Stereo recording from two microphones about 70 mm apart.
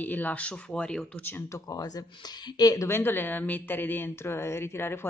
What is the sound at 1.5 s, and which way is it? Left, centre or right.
Speech, left.